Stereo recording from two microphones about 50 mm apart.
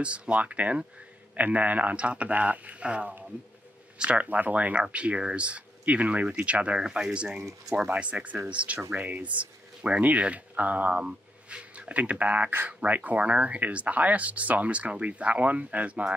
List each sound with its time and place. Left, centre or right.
0.0 s speech: right
6.8 s speech: centre
7.9 s speech: right
11.0 s a sound: centre
11.7 s speech: right